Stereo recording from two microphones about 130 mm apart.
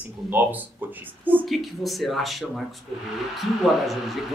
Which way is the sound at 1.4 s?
Centre (ahead or behind).